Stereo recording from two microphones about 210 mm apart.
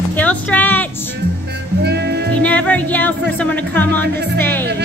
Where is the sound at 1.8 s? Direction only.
50° right (ahead or behind).